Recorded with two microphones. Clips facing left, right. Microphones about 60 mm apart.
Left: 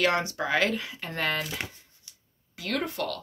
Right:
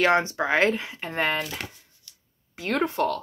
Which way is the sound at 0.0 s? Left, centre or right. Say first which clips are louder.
Right 4 dB; right.